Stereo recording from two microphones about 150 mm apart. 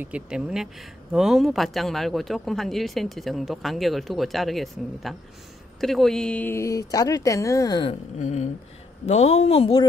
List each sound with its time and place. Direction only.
0.0 s speech: 5° right (ahead or behind); by 7.9 s 25° left (ahead or behind)
8.2 s a woman's voice: 50° left (ahead or behind)